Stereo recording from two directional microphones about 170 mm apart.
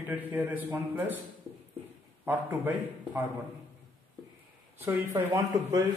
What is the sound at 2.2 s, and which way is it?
A man's voice, 10° right (ahead or behind).